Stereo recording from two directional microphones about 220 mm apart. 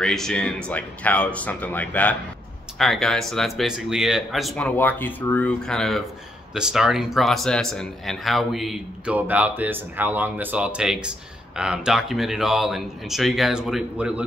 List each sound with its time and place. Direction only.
0.0 s speech: centre (ahead or behind)